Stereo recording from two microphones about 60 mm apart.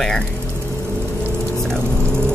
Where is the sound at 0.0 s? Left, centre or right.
Centre.